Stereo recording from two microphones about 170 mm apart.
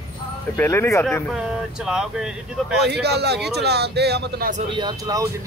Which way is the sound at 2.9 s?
75° right (ahead or behind).